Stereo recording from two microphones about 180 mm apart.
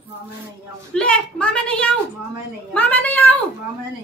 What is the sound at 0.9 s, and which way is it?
A woman's voice, 5° left (ahead or behind).